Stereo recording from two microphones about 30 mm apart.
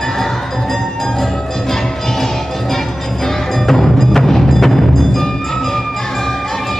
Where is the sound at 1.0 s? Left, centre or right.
Centre.